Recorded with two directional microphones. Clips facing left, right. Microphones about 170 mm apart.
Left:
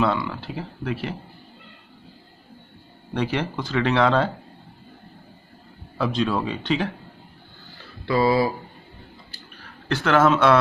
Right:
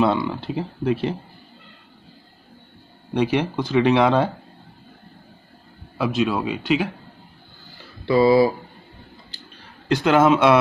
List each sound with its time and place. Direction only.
0.0 s speech: 20° right (ahead or behind)
3.2 s speech: 15° right (ahead or behind)
5.9 s speech: 10° right (ahead or behind)
8.1 s speech: 20° right (ahead or behind)
9.8 s speech: 15° right (ahead or behind)